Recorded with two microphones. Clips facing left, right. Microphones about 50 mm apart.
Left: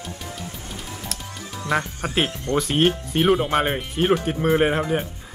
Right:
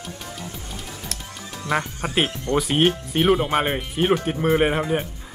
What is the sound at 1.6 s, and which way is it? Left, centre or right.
Speech, left.